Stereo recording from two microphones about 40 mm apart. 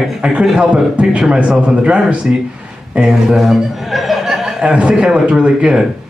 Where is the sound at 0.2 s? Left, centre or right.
Right.